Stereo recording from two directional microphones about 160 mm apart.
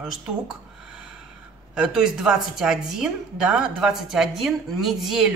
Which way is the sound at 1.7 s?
5° right (ahead or behind).